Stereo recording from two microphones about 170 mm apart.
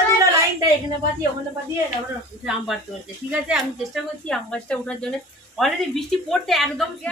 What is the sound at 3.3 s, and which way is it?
Speech, 5° right (ahead or behind).